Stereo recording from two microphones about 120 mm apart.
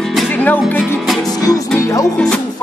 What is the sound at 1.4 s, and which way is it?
Music, 30° left (ahead or behind).